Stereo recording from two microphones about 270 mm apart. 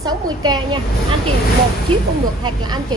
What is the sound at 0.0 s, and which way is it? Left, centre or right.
Speech, centre.